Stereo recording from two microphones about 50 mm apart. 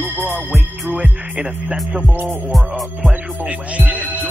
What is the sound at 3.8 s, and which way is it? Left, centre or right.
Speech, right.